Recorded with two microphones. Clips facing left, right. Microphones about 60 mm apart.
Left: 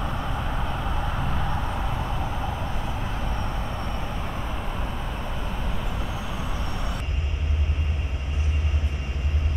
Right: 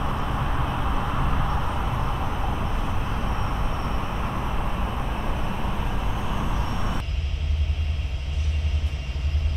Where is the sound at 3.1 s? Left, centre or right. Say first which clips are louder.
Right 2 dB; centre.